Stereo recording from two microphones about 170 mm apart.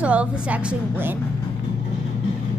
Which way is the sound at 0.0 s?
10° right (ahead or behind).